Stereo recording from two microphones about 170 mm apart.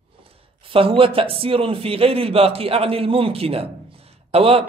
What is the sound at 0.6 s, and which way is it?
A man's voice, 30° right (ahead or behind).